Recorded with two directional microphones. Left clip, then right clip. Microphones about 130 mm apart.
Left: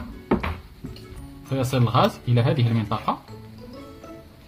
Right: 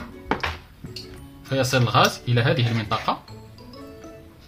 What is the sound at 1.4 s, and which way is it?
Speech, 20° left (ahead or behind).